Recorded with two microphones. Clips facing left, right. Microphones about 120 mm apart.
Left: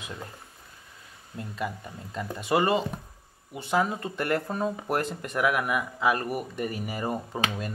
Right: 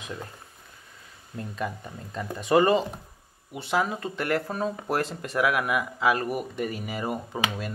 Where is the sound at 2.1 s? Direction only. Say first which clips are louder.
Right 4 dB; 10° left (ahead or behind).